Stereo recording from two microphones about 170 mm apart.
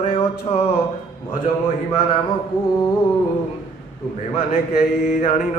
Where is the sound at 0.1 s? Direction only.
35° left (ahead or behind).